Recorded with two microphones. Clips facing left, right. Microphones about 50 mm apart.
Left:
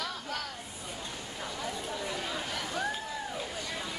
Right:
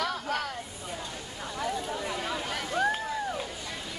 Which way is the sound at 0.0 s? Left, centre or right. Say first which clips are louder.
Right 6 dB; right.